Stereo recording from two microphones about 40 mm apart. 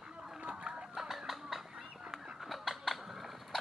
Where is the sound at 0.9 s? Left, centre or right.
Centre.